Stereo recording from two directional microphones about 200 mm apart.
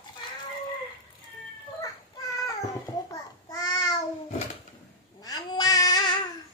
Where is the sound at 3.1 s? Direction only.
20° left (ahead or behind).